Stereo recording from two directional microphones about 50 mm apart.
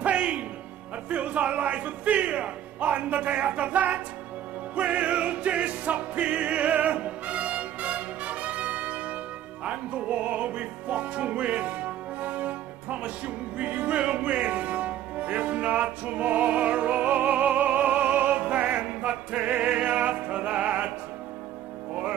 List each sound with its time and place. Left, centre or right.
0.0 s music: right
1.1 s speech: right
4.7 s music: right